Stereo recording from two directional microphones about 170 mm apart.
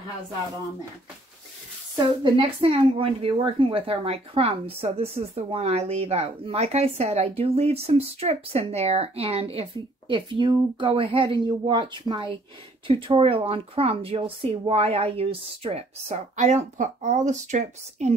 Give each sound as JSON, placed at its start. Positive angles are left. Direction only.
{"t": 2.2, "sound": "a woman's voice", "side_deg": -30}